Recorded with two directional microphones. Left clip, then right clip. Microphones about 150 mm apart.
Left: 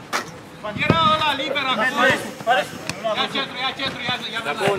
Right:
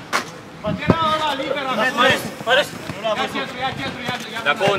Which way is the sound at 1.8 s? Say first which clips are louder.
Right 2 dB; 15° right (ahead or behind).